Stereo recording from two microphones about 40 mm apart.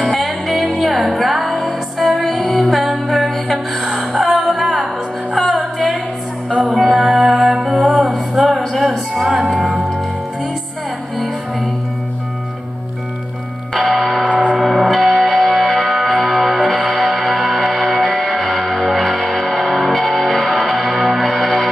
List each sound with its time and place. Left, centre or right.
0.0 s music: centre
5.5 s a sound: centre
6.6 s music: centre
13.7 s music: centre
14.2 s gong: right
14.6 s music: centre